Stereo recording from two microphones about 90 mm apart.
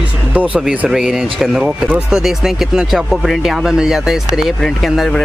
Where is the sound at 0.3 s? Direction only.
15° right (ahead or behind).